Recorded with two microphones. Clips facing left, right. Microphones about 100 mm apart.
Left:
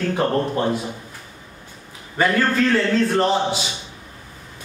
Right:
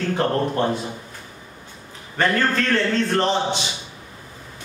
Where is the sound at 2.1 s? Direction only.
5° left (ahead or behind).